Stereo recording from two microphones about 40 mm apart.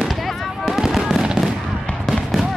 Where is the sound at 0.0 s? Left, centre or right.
Centre.